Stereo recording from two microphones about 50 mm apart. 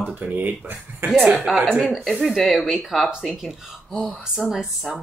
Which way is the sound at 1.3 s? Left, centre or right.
Centre.